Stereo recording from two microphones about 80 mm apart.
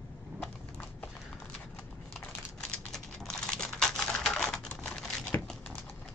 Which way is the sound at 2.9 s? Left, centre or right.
Centre.